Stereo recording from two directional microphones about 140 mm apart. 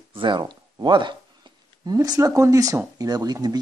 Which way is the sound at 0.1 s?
35° right (ahead or behind).